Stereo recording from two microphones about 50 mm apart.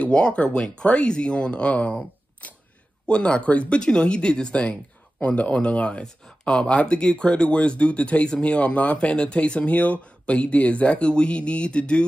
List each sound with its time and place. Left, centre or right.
0.0 s speech: left